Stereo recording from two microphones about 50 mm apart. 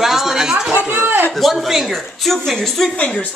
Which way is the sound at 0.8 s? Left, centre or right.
Right.